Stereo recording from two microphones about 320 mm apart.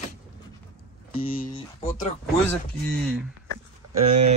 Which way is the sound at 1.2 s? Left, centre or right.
Left.